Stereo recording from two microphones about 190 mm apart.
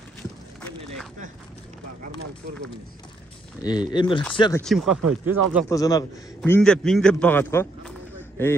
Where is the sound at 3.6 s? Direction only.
20° left (ahead or behind).